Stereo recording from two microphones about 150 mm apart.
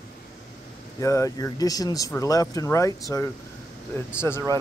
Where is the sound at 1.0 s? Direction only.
20° left (ahead or behind).